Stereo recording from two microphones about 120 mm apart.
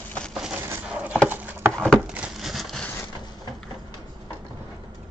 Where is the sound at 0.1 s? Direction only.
5° left (ahead or behind).